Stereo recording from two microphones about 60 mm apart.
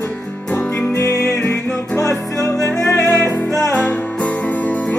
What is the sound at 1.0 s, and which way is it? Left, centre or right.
Music, left.